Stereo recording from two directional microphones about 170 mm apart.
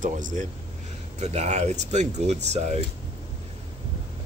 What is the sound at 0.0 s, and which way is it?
Speech, 50° right (ahead or behind).